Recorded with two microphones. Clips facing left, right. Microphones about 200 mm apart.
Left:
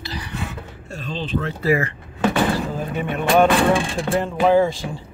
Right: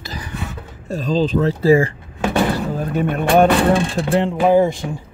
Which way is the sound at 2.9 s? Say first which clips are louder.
Right 3 dB; 45° right (ahead or behind).